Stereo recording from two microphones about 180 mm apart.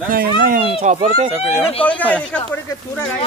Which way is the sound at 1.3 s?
10° right (ahead or behind).